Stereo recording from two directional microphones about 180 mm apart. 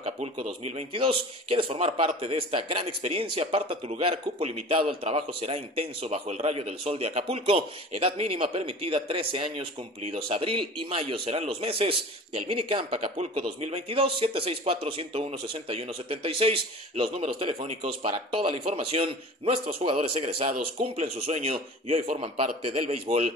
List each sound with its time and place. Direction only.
0.0 s a man's voice: 35° right (ahead or behind)